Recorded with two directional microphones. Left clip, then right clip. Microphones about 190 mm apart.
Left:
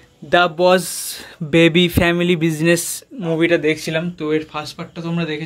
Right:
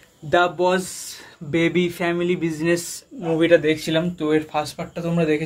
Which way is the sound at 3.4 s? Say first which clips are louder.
Even; 40° left (ahead or behind).